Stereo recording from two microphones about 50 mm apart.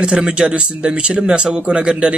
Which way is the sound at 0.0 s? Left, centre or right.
Centre.